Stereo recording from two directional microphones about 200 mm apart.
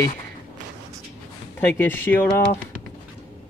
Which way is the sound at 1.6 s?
10° left (ahead or behind).